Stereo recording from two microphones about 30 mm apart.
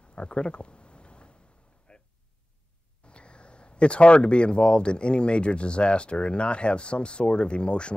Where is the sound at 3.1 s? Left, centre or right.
Left.